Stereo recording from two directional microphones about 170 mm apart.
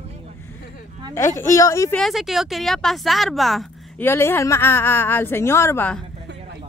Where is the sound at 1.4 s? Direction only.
20° left (ahead or behind).